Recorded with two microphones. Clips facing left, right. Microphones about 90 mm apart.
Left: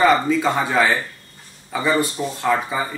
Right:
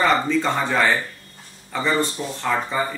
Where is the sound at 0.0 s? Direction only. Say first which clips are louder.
Left 3 dB; 5° left (ahead or behind).